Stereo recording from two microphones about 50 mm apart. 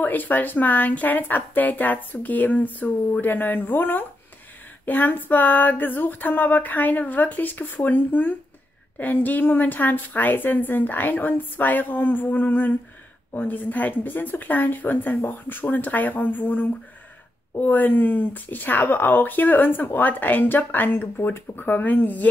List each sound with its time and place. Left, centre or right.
0.0 s speech: left